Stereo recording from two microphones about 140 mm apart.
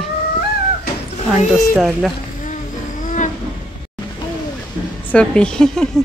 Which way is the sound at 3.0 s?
60° left (ahead or behind).